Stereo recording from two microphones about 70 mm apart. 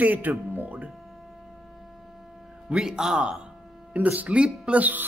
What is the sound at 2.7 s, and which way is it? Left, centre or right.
Speech, centre.